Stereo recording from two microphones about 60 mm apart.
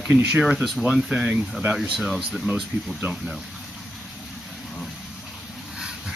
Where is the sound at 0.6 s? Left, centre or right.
Centre.